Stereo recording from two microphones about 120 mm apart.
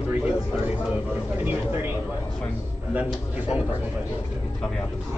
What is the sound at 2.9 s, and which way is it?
Speech, 10° right (ahead or behind).